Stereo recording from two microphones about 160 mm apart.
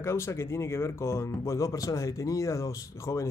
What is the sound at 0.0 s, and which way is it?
Speech, 15° left (ahead or behind).